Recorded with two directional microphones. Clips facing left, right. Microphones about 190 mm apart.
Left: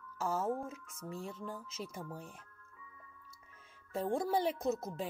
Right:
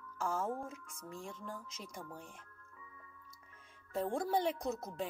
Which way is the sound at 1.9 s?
5° left (ahead or behind).